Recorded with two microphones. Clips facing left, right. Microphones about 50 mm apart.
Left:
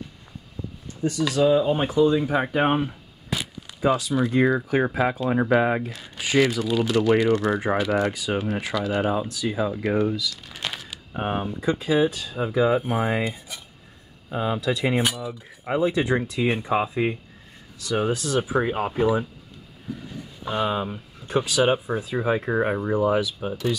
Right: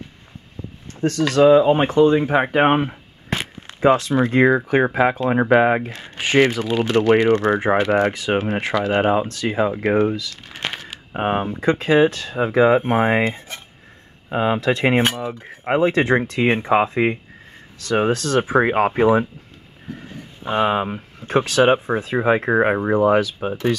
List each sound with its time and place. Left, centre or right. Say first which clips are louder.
0.9 s speech: right 6 dB; right
4.8 s speech: right 5 dB; right
9.3 s speech: right 5 dB; right
14.3 s cutlery: right 6 dB; right
19.9 s speech: even; right
22.9 s cutlery: right 5 dB; right